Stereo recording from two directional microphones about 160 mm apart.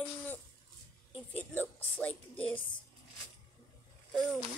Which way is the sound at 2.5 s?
30° left (ahead or behind).